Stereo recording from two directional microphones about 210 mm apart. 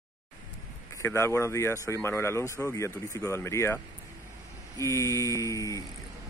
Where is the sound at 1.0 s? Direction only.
10° left (ahead or behind).